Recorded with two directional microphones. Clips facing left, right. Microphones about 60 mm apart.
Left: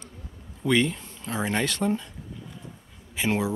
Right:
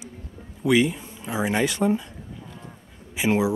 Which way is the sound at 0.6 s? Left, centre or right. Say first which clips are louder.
Right 3 dB; centre.